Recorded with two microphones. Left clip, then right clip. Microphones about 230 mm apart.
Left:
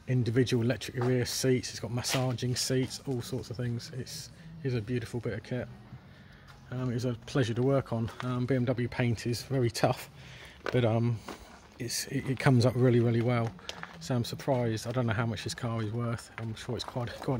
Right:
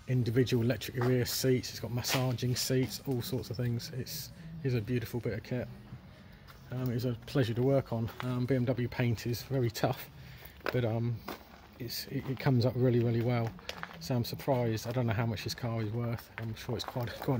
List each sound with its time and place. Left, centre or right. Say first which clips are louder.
0.0 s speech: left 2 dB; left
6.7 s speech: left 2 dB; centre